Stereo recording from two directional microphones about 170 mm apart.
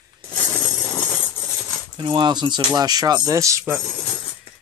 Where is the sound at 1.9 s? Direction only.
30° right (ahead or behind).